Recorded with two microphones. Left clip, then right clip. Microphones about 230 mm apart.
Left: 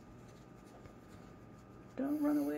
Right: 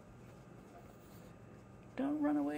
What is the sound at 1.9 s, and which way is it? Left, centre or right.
Speech, centre.